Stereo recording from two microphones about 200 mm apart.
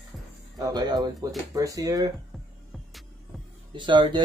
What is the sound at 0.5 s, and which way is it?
Speech, 20° right (ahead or behind).